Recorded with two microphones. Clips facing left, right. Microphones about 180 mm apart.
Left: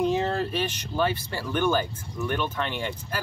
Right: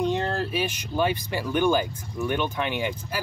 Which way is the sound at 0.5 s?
10° right (ahead or behind).